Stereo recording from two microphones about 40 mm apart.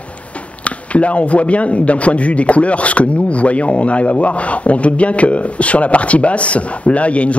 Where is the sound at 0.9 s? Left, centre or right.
Left.